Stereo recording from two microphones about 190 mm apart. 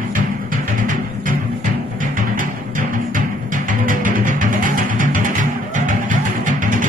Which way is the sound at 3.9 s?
45° right (ahead or behind).